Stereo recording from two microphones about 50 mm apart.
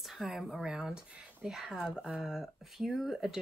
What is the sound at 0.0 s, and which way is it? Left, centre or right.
Speech, centre.